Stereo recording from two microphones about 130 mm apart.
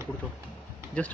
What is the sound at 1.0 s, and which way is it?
Speech, 10° left (ahead or behind).